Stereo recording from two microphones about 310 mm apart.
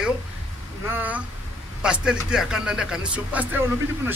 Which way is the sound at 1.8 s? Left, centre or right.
Centre.